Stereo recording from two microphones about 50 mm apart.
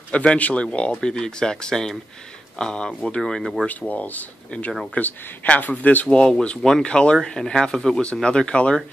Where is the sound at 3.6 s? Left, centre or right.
Left.